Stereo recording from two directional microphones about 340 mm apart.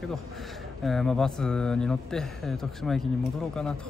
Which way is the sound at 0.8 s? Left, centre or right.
Centre.